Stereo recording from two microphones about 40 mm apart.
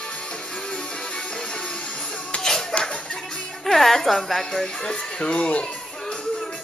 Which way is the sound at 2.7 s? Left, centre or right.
Left.